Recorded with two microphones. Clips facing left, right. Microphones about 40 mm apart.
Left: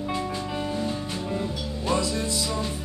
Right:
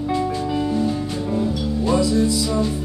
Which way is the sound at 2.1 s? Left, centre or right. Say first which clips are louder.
Right 9 dB; left.